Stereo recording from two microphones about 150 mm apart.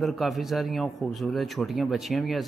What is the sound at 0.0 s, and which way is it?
A man's voice, centre (ahead or behind).